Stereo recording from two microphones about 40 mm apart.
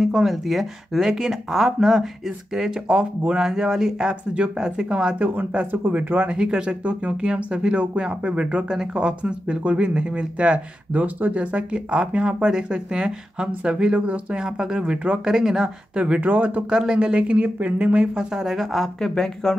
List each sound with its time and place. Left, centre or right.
0.3 s speech: centre; by 5.3 s right
5.7 s speech: right
6.3 s speech: centre
6.8 s speech: right
11.5 s speech: right
14.3 s speech: centre
16.2 s speech: right
16.7 s speech: centre
17.3 s speech: right
18.1 s speech: centre
18.7 s speech: centre